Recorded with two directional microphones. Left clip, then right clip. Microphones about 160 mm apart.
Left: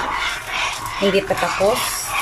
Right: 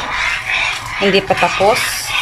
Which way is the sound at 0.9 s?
Centre (ahead or behind).